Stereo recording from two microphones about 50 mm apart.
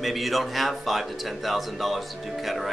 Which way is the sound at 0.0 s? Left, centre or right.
Centre.